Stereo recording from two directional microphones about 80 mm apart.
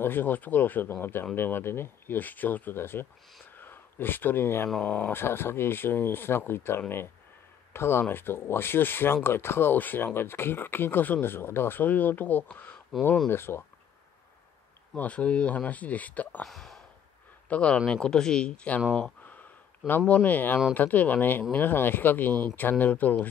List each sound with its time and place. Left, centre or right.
0.0 s speech: left
3.5 s a sound: left
4.6 s speech: centre
5.1 s speech: left
15.0 s speech: centre
16.4 s speech: centre
17.5 s speech: centre
20.1 s speech: left